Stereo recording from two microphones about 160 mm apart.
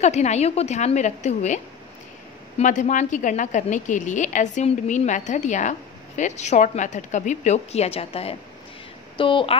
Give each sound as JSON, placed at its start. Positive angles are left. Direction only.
{"t": 0.0, "sound": "a woman's voice", "side_deg": 45}
{"t": 2.6, "sound": "a woman's voice", "side_deg": 50}